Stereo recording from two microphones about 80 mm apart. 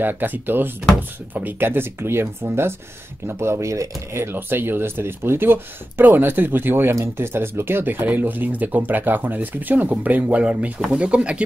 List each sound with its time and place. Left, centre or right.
0.0 s speech: right